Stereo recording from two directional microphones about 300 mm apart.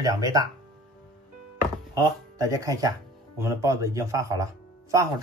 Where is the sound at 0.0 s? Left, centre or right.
Centre.